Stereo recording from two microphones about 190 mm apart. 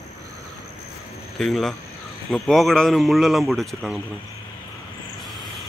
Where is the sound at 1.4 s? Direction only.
Centre (ahead or behind).